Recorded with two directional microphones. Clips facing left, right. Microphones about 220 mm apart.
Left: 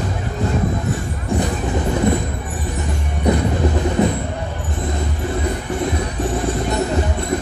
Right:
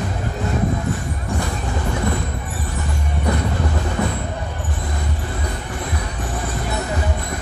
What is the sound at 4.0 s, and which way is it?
Music, 20° left (ahead or behind).